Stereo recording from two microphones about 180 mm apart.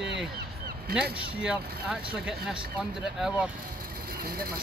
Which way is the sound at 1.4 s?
5° right (ahead or behind).